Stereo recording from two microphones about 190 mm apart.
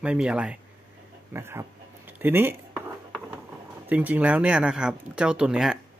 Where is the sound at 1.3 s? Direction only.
15° right (ahead or behind).